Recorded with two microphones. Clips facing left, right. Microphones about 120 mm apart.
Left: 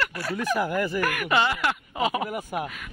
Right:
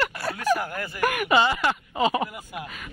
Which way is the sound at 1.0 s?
20° right (ahead or behind).